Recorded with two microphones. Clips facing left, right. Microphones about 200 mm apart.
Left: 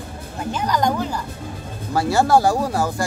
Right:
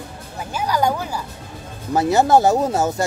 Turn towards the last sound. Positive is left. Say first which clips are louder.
# right 2 dB
turn(degrees=-25)  # may be behind; listen again after turning